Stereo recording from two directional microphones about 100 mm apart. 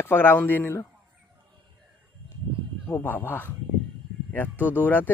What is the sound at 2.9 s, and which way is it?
Speech, 20° left (ahead or behind).